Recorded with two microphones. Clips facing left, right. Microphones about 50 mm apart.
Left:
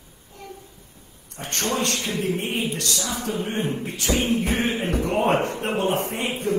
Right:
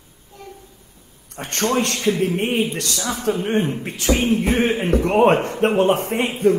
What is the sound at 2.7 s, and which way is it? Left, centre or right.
Beatboxing, right.